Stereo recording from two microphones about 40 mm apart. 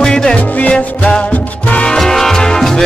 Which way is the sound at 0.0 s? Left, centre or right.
Centre.